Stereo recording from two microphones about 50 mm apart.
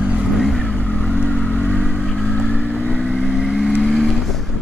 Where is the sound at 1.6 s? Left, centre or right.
Centre.